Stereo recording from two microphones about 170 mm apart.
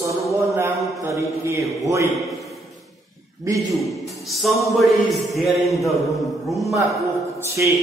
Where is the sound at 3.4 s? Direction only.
20° right (ahead or behind).